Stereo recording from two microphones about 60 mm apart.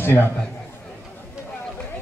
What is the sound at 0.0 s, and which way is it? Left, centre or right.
Speech, left.